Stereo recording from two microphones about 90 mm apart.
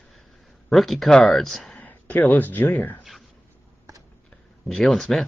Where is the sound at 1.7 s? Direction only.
20° left (ahead or behind).